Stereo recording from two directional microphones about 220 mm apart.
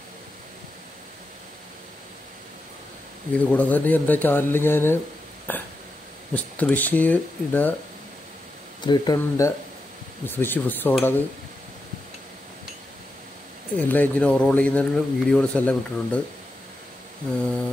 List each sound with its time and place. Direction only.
3.3 s speech: 5° left (ahead or behind)
5.5 s a sound: 10° left (ahead or behind)
6.3 s speech: 5° left (ahead or behind)
8.8 s speech: 20° left (ahead or behind)
13.7 s speech: 5° left (ahead or behind)